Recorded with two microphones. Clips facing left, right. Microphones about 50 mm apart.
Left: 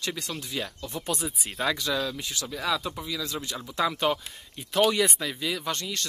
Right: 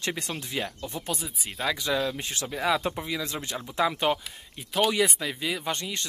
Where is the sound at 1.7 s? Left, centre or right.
Centre.